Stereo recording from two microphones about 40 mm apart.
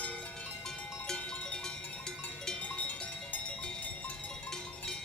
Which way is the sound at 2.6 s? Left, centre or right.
Left.